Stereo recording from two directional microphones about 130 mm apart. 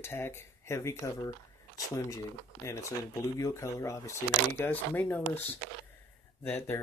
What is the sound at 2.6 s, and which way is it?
Speech, 25° left (ahead or behind).